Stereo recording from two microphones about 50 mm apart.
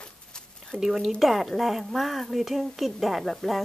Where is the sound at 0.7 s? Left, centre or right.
Centre.